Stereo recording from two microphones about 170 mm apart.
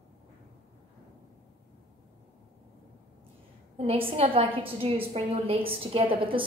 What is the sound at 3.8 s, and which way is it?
A woman's voice, 35° right (ahead or behind).